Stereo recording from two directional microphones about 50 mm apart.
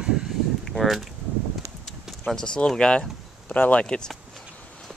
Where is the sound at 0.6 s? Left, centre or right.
Centre.